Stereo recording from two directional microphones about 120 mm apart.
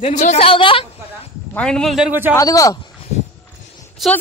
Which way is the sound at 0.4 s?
45° left (ahead or behind).